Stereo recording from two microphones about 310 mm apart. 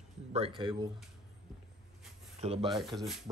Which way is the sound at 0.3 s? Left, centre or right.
Centre.